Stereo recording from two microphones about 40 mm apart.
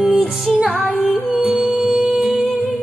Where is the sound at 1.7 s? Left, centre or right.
Right.